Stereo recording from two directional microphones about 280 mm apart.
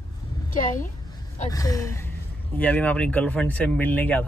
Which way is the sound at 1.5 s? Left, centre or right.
Centre.